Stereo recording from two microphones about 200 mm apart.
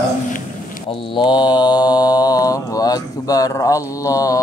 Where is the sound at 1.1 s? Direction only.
20° left (ahead or behind).